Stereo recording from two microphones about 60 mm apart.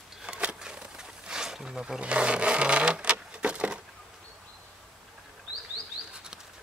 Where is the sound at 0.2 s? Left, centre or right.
Centre.